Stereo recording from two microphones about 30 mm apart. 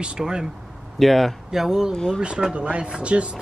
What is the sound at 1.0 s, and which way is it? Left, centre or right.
Speech, centre.